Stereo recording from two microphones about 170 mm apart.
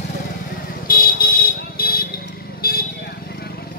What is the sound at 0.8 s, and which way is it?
Vehicle, 60° left (ahead or behind).